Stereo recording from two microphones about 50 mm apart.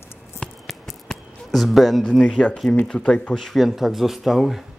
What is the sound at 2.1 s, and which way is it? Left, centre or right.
Speech, centre.